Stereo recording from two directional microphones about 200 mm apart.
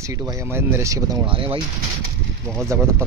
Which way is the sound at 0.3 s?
15° right (ahead or behind).